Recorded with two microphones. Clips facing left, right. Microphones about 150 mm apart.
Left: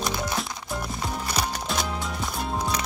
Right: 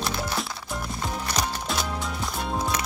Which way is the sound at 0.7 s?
Centre (ahead or behind).